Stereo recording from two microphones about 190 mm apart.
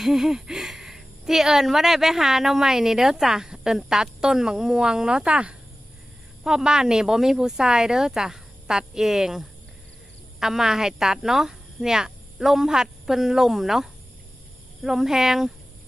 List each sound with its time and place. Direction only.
0.0 s speech: centre (ahead or behind)